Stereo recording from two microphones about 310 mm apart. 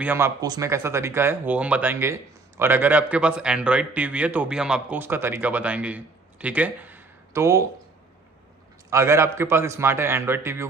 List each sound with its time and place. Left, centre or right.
0.0 s speech: centre
8.9 s a man's voice: centre